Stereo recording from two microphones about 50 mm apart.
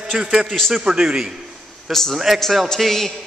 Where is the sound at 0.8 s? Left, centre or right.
Centre.